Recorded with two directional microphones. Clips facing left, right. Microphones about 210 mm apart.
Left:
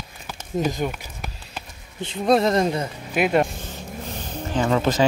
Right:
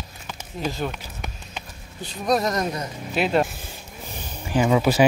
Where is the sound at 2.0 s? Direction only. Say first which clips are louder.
Left 4 dB; 25° left (ahead or behind).